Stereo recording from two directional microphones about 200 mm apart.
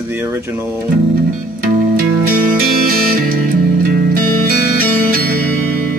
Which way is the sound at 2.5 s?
45° right (ahead or behind).